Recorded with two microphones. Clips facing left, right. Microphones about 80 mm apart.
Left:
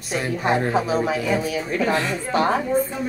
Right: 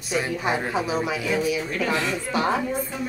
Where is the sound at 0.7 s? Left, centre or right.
Left.